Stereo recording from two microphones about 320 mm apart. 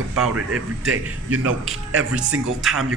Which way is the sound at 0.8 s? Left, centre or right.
Right.